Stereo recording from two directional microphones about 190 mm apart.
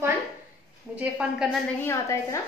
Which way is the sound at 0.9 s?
5° right (ahead or behind).